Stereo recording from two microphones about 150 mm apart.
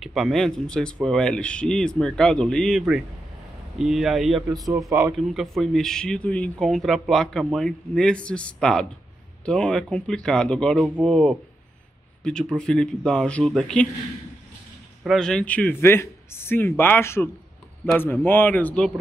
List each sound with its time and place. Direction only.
0.0 s speech: centre (ahead or behind)
4.6 s speech: 20° right (ahead or behind)
4.9 s speech: 5° right (ahead or behind)
15.0 s a man's voice: 5° left (ahead or behind)